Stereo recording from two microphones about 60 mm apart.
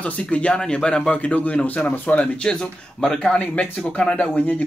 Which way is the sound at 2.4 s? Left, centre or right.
Centre.